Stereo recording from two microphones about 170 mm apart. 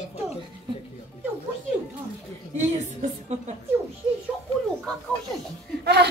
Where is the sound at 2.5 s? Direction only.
40° right (ahead or behind).